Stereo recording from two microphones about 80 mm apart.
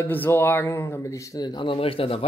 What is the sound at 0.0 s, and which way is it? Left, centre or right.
Speech, left.